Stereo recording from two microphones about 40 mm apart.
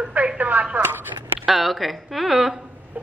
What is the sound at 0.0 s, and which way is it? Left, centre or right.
Telephone, right.